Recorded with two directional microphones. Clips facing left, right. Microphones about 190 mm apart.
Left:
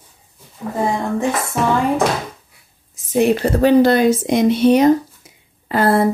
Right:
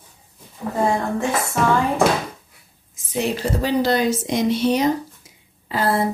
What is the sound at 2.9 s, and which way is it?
A woman's voice, 50° left (ahead or behind).